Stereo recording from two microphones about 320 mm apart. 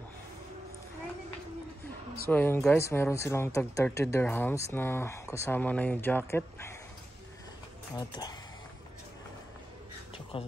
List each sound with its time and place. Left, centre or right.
2.2 s speech: centre
7.9 s speech: centre
10.3 s speech: centre